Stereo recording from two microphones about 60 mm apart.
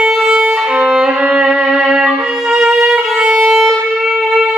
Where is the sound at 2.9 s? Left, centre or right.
Centre.